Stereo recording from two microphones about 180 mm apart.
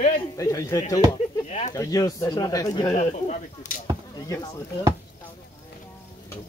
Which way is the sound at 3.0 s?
40° left (ahead or behind).